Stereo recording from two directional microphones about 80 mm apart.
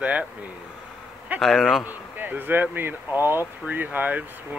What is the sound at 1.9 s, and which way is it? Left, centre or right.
Speech, right.